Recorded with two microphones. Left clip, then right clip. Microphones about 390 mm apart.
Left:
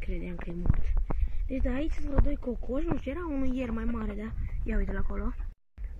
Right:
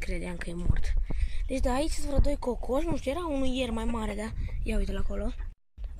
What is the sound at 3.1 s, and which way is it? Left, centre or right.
A woman's voice, centre.